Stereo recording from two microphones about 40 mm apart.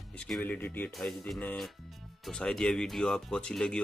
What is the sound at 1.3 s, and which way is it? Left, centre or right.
Speech, centre.